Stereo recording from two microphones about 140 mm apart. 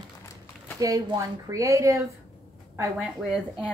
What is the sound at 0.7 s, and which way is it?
A woman's voice, 25° right (ahead or behind).